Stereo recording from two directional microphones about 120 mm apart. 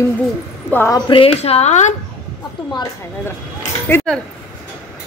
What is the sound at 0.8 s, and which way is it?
Speech, 35° left (ahead or behind).